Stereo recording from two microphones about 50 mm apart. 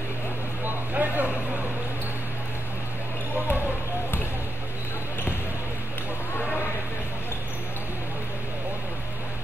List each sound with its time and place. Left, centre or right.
0.7 s vehicle: right